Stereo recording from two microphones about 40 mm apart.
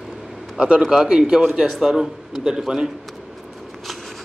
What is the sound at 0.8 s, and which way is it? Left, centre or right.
Speech, centre.